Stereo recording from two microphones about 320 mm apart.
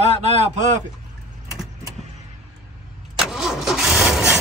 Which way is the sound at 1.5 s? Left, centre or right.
Centre.